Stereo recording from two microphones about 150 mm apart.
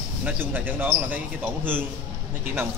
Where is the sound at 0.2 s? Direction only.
10° right (ahead or behind).